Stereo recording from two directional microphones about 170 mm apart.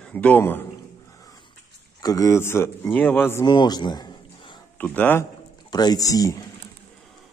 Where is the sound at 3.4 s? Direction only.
25° left (ahead or behind).